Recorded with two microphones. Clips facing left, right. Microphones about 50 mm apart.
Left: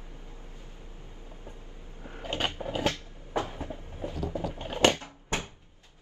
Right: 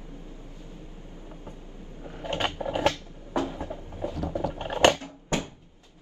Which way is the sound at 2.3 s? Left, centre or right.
Right.